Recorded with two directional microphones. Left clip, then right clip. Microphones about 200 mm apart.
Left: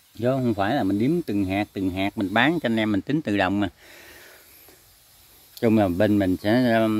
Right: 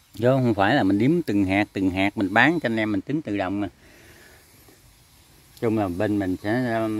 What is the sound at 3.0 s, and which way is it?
Speech, 15° left (ahead or behind).